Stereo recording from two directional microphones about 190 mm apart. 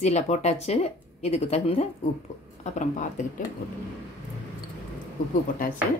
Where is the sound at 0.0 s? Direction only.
35° left (ahead or behind).